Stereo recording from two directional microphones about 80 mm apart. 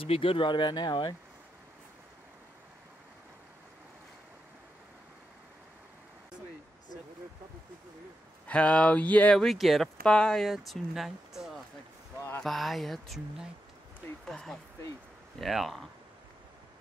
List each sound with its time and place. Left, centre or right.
0.4 s speech: left
8.5 s speech: centre
9.4 s speech: centre
12.2 s a sound: left
12.4 s speech: centre
14.2 s speech: centre